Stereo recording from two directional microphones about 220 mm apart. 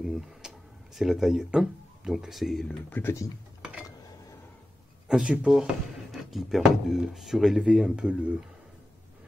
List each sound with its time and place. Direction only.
0.0 s speech: 5° right (ahead or behind)
5.0 s speech: 5° right (ahead or behind)